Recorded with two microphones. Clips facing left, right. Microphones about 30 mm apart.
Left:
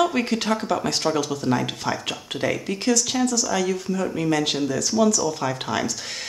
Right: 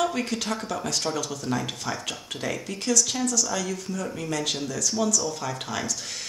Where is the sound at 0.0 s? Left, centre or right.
Left.